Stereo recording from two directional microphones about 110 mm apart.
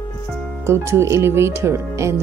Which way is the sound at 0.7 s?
25° right (ahead or behind).